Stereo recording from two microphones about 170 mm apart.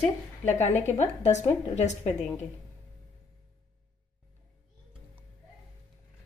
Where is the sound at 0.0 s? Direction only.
45° left (ahead or behind).